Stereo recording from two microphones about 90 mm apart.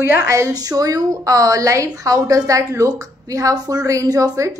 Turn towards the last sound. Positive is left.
turn(degrees=-40)  # may be behind; listen again after turning